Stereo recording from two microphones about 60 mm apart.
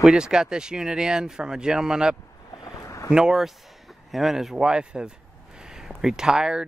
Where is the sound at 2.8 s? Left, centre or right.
Left.